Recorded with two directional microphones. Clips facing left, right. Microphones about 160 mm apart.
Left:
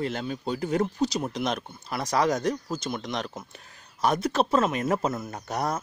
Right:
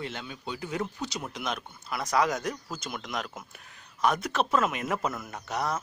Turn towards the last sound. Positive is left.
turn(degrees=45)  # may be behind; listen again after turning